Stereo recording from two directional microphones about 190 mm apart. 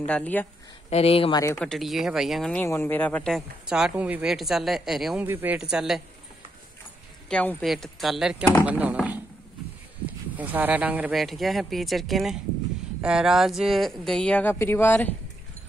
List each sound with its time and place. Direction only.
0.0 s speech: 5° left (ahead or behind)
0.8 s speech: 30° left (ahead or behind)
1.6 s speech: centre (ahead or behind)
2.6 s speech: 10° left (ahead or behind)
7.2 s speech: 5° left (ahead or behind)